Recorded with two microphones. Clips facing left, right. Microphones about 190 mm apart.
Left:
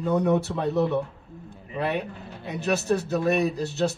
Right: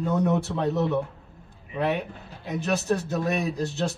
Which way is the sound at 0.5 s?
10° left (ahead or behind).